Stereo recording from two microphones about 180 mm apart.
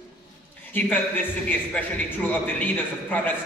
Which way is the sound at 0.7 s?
10° left (ahead or behind).